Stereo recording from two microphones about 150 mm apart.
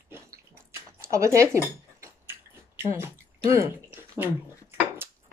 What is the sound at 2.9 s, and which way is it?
Speech, 15° right (ahead or behind).